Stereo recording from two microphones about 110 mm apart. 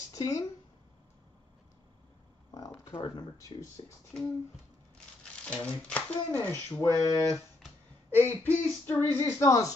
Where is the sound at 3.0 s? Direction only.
30° left (ahead or behind).